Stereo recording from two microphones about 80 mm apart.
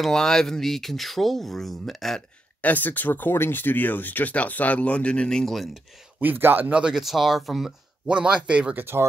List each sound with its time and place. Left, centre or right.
0.0 s speech: centre
2.6 s speech: left; by 5.7 s centre
6.2 s a man's voice: right
6.7 s speech: centre
8.1 s speech: centre